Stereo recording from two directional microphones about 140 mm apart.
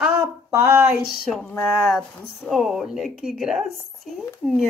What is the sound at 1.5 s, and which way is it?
Speech, 10° left (ahead or behind).